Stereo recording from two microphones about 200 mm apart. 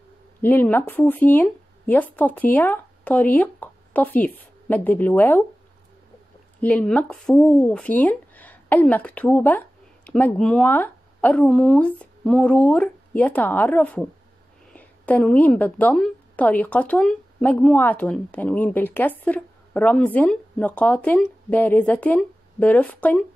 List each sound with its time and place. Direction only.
0.4 s speech: 10° left (ahead or behind)
6.6 s a woman's voice: 5° left (ahead or behind)